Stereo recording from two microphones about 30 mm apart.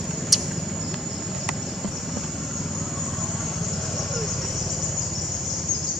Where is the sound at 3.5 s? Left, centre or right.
Centre.